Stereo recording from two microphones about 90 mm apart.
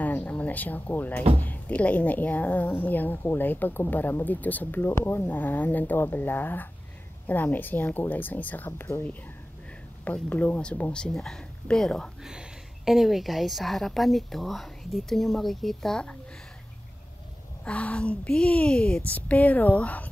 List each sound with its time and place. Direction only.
0.0 s a sound: 20° left (ahead or behind)
1.4 s a woman's voice: 15° left (ahead or behind)
12.2 s a woman's voice: 5° right (ahead or behind)
17.6 s a woman's voice: 15° left (ahead or behind)